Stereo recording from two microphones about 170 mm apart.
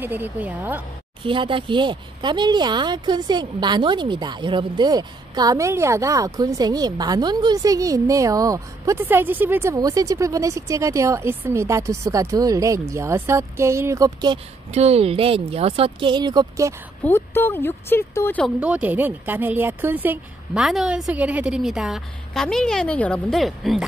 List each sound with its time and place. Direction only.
0.0 s speech: 10° right (ahead or behind)
1.2 s speech: 30° right (ahead or behind)
14.7 s speech: 40° right (ahead or behind); by 16.7 s 20° right (ahead or behind)
17.0 s speech: 15° left (ahead or behind)
18.6 s speech: 10° right (ahead or behind)